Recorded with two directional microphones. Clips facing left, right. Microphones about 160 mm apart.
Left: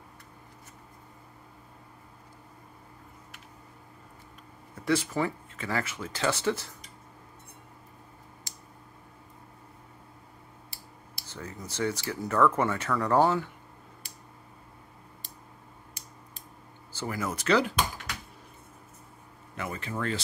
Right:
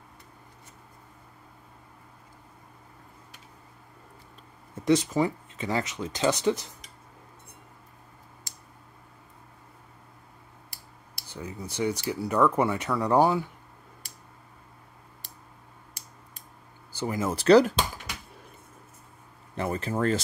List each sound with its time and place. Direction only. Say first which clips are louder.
4.7 s speech: right 4 dB; 20° right (ahead or behind)
11.2 s speech: right 3 dB; 10° right (ahead or behind)
16.9 s speech: right 4 dB; 20° right (ahead or behind); by 17.8 s 40° right (ahead or behind)
19.5 s speech: right 6 dB; 35° right (ahead or behind)